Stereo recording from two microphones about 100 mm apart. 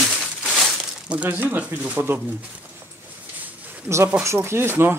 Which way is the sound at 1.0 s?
15° right (ahead or behind).